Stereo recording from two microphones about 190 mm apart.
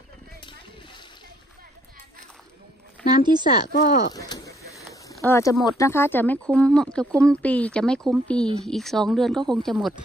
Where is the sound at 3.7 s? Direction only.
45° left (ahead or behind).